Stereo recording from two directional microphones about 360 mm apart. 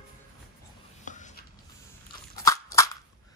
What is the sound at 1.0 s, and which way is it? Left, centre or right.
Writing, left.